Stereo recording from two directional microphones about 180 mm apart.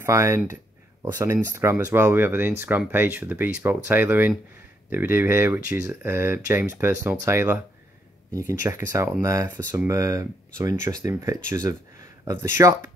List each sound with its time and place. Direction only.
0.0 s speech: 15° right (ahead or behind)